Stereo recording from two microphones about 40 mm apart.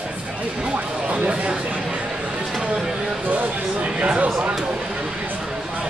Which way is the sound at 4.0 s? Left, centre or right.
Right.